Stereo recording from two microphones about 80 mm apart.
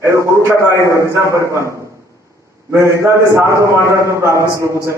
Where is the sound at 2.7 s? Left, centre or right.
Right.